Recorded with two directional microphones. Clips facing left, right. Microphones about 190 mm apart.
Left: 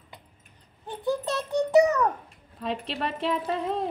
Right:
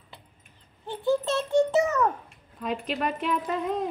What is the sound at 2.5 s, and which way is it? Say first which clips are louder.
Speech: right 1 dB; 30° left (ahead or behind).